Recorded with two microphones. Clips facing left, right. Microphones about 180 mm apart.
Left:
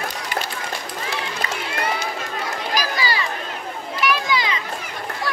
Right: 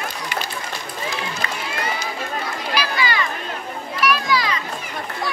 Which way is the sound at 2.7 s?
40° left (ahead or behind).